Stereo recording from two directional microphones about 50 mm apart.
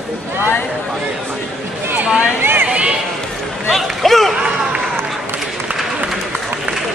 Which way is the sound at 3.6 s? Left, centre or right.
Centre.